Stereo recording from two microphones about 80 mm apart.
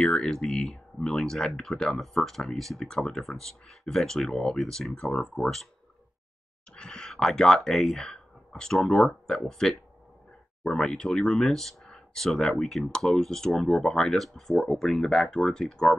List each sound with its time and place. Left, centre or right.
0.0 s speech: centre
6.7 s speech: centre